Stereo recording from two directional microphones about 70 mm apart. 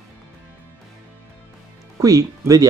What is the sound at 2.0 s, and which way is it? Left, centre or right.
Speech, right.